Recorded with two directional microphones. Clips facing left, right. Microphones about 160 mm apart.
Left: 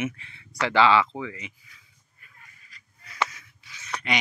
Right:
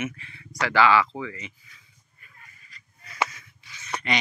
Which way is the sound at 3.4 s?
Centre (ahead or behind).